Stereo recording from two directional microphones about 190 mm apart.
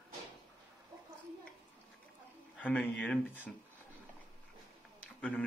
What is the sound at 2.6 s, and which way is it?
Speech, 10° left (ahead or behind).